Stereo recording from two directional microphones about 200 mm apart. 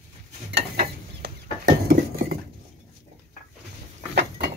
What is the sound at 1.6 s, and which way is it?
Dishes, 50° right (ahead or behind).